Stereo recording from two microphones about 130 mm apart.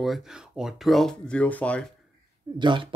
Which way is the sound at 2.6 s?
40° right (ahead or behind).